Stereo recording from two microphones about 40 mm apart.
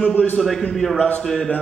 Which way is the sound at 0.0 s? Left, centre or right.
Left.